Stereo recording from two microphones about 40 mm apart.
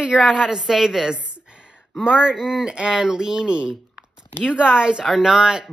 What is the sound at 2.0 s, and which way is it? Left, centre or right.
Speech, right.